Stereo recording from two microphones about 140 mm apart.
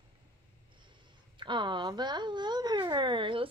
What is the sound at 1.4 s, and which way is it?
Speech, 35° right (ahead or behind).